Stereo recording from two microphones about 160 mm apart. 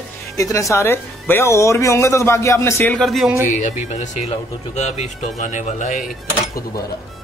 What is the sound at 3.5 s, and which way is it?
Speech, 50° left (ahead or behind).